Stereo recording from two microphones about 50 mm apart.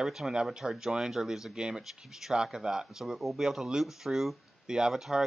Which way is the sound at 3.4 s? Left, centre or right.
Centre.